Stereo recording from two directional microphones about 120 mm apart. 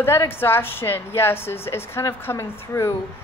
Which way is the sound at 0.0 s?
20° left (ahead or behind).